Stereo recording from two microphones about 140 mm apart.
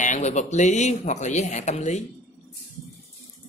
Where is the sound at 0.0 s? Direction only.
55° left (ahead or behind).